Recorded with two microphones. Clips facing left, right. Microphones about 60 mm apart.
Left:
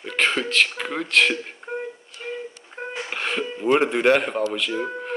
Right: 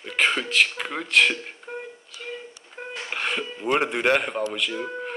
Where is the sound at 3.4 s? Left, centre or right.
Centre.